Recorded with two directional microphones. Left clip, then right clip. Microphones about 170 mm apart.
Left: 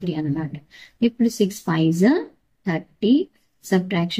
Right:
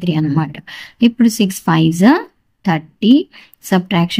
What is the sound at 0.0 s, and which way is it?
Speech, 55° right (ahead or behind).